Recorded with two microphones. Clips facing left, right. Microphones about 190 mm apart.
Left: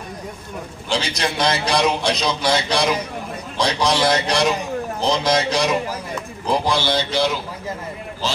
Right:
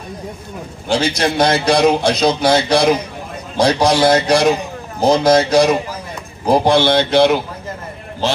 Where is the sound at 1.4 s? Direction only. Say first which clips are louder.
Right 6 dB; 55° right (ahead or behind).